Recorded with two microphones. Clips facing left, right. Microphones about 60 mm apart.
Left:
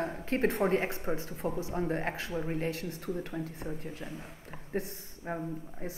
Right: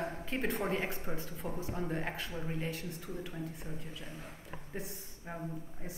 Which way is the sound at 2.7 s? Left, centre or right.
Left.